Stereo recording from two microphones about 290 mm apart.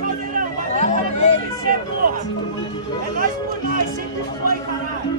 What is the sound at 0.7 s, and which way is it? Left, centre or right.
Music, left.